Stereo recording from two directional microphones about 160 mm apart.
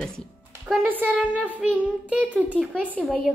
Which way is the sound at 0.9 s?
10° right (ahead or behind).